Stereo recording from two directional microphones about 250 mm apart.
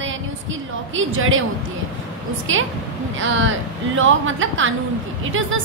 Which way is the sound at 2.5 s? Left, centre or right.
Right.